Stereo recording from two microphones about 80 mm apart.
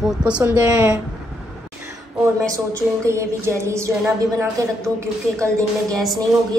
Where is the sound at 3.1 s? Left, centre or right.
Right.